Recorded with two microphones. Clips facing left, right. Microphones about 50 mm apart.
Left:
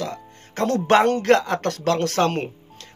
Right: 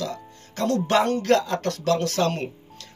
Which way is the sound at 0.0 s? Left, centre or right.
Left.